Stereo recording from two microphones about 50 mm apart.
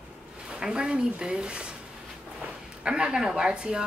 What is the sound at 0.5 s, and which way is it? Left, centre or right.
Speech, centre.